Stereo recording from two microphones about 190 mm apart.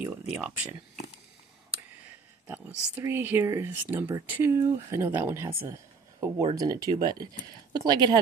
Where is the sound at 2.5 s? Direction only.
10° right (ahead or behind).